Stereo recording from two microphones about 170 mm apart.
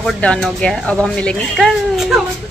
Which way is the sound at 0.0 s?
5° left (ahead or behind).